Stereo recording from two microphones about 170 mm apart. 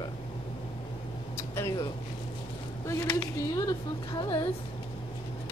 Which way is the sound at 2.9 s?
20° left (ahead or behind).